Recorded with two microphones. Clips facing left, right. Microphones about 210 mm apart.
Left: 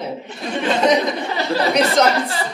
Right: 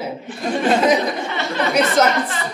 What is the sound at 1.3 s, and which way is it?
Speech, 35° left (ahead or behind).